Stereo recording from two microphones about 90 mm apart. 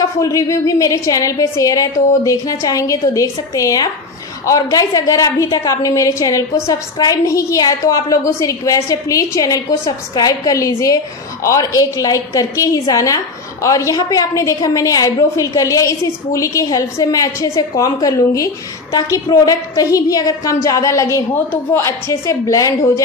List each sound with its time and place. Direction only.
0.0 s a woman's voice: 40° left (ahead or behind)